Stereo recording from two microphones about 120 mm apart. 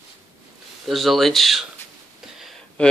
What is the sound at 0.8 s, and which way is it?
Speech, centre (ahead or behind).